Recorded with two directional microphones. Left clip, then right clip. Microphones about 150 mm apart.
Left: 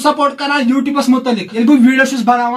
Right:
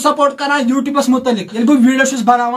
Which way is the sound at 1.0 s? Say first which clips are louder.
Even; 5° right (ahead or behind).